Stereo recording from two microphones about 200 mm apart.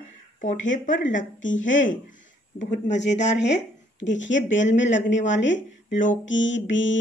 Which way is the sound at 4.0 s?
65° left (ahead or behind).